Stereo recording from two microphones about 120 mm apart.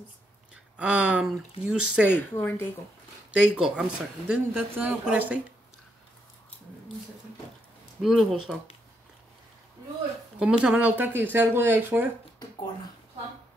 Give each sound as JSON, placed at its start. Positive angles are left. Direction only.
{"t": 0.7, "sound": "speech", "side_deg": -10}
{"t": 2.0, "sound": "speech", "side_deg": 20}
{"t": 3.3, "sound": "speech", "side_deg": -5}
{"t": 8.0, "sound": "speech", "side_deg": 0}
{"t": 10.4, "sound": "speech", "side_deg": -10}